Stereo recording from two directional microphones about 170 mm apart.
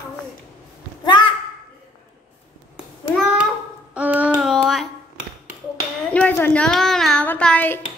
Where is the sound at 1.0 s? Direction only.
25° left (ahead or behind).